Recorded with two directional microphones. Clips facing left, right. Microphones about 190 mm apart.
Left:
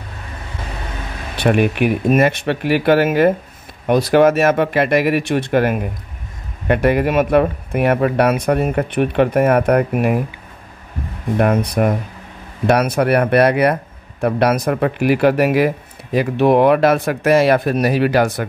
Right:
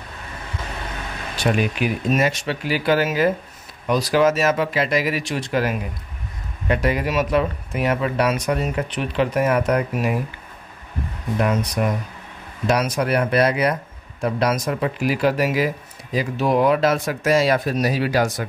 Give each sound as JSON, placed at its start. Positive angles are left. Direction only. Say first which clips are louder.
{"t": 1.3, "sound": "speech", "louder": "left 6 dB", "side_deg": 60}
{"t": 11.3, "sound": "speech", "louder": "left 5 dB", "side_deg": 55}